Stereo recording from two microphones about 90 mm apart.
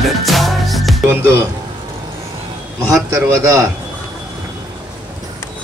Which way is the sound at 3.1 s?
35° right (ahead or behind).